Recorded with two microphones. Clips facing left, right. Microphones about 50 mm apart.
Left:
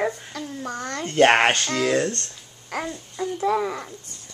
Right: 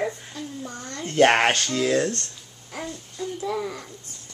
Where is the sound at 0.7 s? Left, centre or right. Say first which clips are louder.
Left 6 dB; left.